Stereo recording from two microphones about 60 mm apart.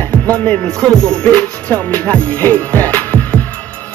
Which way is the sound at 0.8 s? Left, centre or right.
Left.